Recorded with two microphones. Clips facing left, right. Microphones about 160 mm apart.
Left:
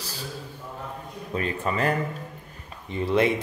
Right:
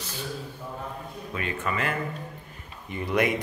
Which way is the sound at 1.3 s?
35° left (ahead or behind).